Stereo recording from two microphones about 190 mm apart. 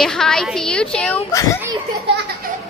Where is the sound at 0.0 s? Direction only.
5° left (ahead or behind).